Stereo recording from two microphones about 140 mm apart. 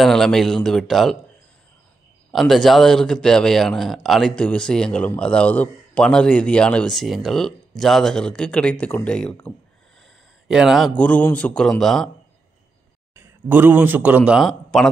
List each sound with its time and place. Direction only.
0.0 s a man's voice: 5° left (ahead or behind)
2.3 s a man's voice: centre (ahead or behind)
10.5 s a man's voice: 5° right (ahead or behind)
10.9 s a man's voice: 10° left (ahead or behind)
13.1 s speech: 15° right (ahead or behind); by 14.9 s centre (ahead or behind)